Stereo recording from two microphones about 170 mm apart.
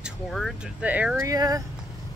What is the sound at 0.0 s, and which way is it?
Speech, centre (ahead or behind).